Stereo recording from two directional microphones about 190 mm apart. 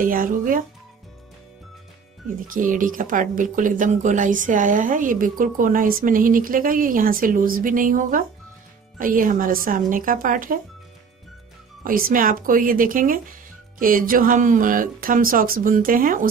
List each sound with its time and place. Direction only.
0.0 s a woman's voice: 45° right (ahead or behind)
2.4 s a woman's voice: 45° right (ahead or behind)
11.8 s a woman's voice: 50° right (ahead or behind)